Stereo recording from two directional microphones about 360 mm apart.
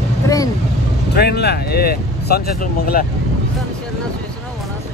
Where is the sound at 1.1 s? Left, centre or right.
Left.